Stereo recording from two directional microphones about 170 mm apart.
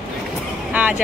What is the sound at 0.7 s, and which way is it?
Vehicle, 10° right (ahead or behind).